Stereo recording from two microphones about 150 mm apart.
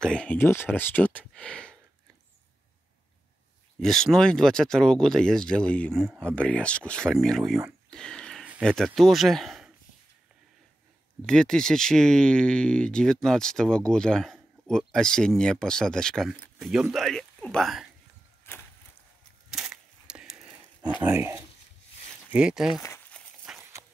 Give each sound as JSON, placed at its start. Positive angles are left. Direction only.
{"t": 0.0, "sound": "speech", "side_deg": 5}
{"t": 3.8, "sound": "speech", "side_deg": 5}
{"t": 7.9, "sound": "a sound", "side_deg": 5}
{"t": 8.6, "sound": "speech", "side_deg": 0}
{"t": 11.2, "sound": "speech", "side_deg": 5}
{"t": 18.4, "sound": "a sound", "side_deg": 15}
{"t": 19.5, "sound": "a sound", "side_deg": -5}
{"t": 21.1, "sound": "speech", "side_deg": -20}
{"t": 22.3, "sound": "speech", "side_deg": -5}
{"t": 23.2, "sound": "walk", "side_deg": 5}